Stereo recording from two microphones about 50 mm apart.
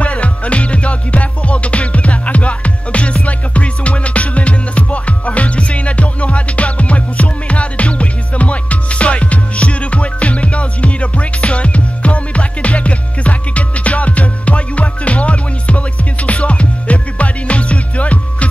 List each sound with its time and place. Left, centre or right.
0.0 s music: left